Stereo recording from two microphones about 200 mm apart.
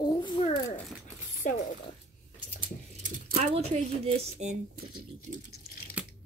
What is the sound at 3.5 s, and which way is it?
A woman's voice, 30° right (ahead or behind).